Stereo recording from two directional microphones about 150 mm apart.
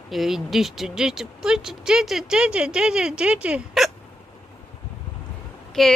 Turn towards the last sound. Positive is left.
turn(degrees=0)  # may be behind; listen again after turning